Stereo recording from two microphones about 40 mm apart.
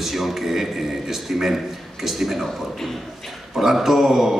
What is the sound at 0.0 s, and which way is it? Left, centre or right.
Speech, centre.